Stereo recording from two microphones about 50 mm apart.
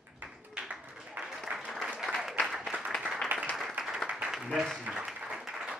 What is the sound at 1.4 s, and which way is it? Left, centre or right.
Applause, right.